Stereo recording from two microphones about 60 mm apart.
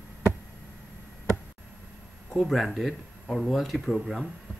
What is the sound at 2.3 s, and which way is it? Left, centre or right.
Speech, centre.